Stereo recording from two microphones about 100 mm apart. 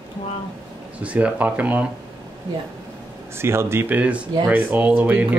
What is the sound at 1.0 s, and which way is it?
Speech, 15° right (ahead or behind).